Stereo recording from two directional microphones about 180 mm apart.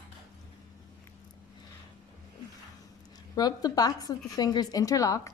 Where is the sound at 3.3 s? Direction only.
20° left (ahead or behind).